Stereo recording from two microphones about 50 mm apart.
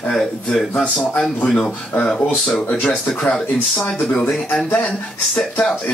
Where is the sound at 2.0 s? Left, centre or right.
Left.